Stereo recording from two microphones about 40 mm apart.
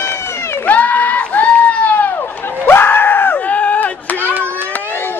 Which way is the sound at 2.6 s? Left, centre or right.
Left.